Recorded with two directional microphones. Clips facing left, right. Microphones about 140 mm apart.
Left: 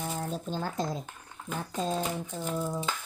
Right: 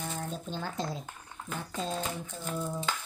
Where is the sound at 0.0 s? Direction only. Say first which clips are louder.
Left 3 dB; 45° left (ahead or behind).